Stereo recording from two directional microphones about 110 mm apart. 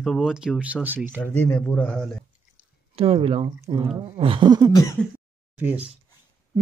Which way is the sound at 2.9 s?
60° right (ahead or behind).